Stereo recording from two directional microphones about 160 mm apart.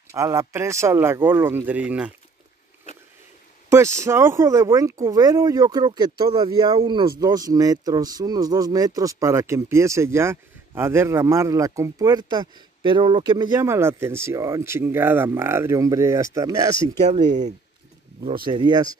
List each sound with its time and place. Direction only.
0.1 s speech: 20° right (ahead or behind)
3.7 s speech: 15° right (ahead or behind)
13.6 s speech: 15° right (ahead or behind)
17.1 s speech: 50° right (ahead or behind)
18.4 s speech: 30° right (ahead or behind)